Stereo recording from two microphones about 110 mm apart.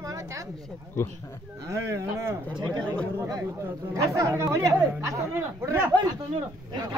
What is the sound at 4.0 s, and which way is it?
Speech, 25° right (ahead or behind).